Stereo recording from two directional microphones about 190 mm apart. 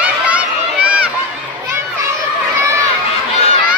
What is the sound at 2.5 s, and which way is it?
Crowd, 15° right (ahead or behind).